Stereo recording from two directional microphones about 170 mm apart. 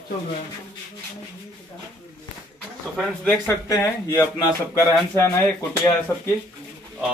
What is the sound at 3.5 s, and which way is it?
Speech, 20° left (ahead or behind).